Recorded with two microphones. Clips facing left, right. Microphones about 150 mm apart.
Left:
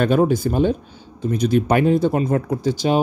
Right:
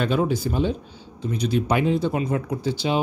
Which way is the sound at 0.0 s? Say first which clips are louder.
Left 6 dB; 50° left (ahead or behind).